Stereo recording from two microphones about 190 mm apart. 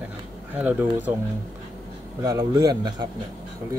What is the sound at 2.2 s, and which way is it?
Speech, 20° right (ahead or behind).